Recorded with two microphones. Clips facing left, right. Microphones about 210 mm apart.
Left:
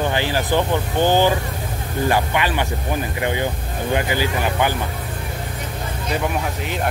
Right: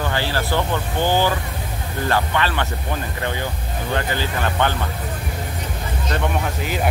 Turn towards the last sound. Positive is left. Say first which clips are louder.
# right 1 dB
turn(degrees=0)  # may be behind; listen again after turning